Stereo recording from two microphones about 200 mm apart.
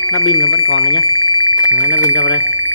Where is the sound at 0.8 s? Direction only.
25° left (ahead or behind).